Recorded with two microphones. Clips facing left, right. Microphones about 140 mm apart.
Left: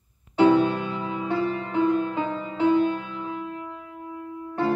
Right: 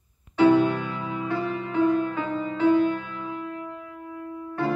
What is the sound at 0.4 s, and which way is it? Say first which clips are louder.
Music: even; 20° left (ahead or behind).